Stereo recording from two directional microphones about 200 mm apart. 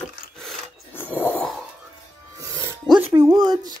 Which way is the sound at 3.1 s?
15° right (ahead or behind).